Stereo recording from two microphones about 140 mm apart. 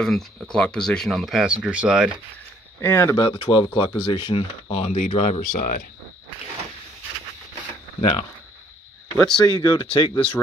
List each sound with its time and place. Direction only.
0.0 s speech: 5° left (ahead or behind)
2.8 s speech: 15° left (ahead or behind)
3.2 s speech: 35° left (ahead or behind); by 5.6 s 50° left (ahead or behind)
5.6 s speech: 75° left (ahead or behind)
8.0 s speech: 35° left (ahead or behind)
9.1 s speech: 5° left (ahead or behind)
9.8 s speech: 40° left (ahead or behind)